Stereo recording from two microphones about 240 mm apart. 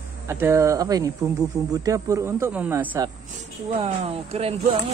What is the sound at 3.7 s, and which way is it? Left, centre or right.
Speech, right.